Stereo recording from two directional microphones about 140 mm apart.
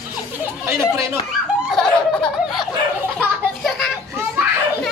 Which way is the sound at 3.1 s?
Centre (ahead or behind).